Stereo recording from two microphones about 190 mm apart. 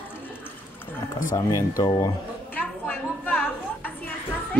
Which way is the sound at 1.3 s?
15° left (ahead or behind).